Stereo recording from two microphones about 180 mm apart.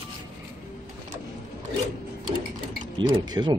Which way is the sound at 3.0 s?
25° right (ahead or behind).